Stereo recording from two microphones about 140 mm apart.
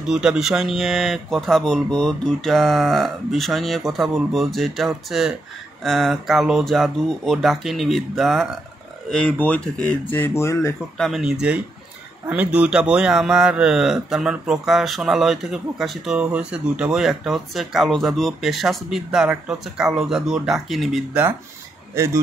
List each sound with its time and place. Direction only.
0.0 s a man's voice: 5° right (ahead or behind); by 10.7 s 20° left (ahead or behind)
11.0 s a man's voice: centre (ahead or behind)
21.9 s speech: 20° right (ahead or behind)